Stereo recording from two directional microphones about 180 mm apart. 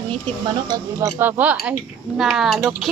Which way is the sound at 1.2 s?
10° right (ahead or behind).